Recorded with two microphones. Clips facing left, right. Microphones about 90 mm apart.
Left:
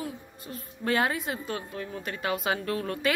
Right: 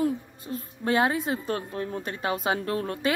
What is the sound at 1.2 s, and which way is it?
Speech, 35° right (ahead or behind).